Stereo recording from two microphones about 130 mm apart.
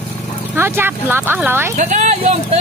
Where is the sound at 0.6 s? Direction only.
15° right (ahead or behind).